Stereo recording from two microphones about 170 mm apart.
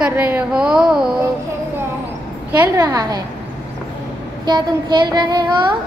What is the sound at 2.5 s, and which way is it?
Child singing, 15° right (ahead or behind).